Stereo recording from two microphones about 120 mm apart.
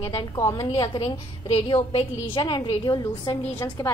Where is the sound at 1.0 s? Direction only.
55° left (ahead or behind).